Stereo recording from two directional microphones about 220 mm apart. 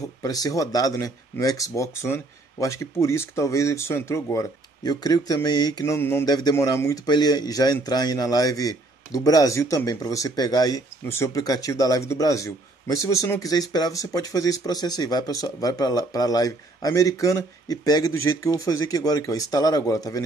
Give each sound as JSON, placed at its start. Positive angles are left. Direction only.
{"t": 0.2, "sound": "speech", "side_deg": 15}